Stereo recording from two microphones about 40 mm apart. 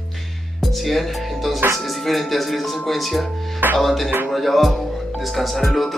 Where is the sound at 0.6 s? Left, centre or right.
Centre.